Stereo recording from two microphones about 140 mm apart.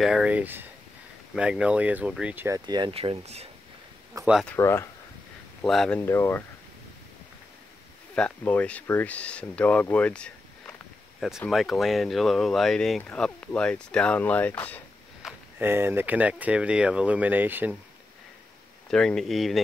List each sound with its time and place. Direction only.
0.0 s speech: 5° right (ahead or behind)
2.6 s speech: 30° right (ahead or behind)
2.9 s speech: 45° right (ahead or behind)
4.6 s speech: 20° left (ahead or behind)
5.6 s speech: 5° left (ahead or behind)
5.9 s speech: 15° left (ahead or behind)
8.1 s speech: 10° left (ahead or behind)
15.2 s a sound: centre (ahead or behind)
15.6 s speech: 15° right (ahead or behind)
18.9 s speech: 5° left (ahead or behind)